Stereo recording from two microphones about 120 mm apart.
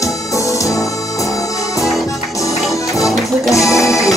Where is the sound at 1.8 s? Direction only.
Centre (ahead or behind).